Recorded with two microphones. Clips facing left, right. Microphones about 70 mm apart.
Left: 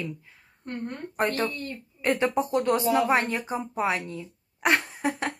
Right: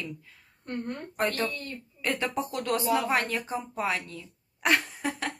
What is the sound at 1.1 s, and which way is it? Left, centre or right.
A woman's voice, left.